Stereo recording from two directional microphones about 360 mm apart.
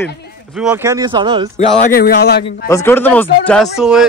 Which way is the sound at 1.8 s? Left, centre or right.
Left.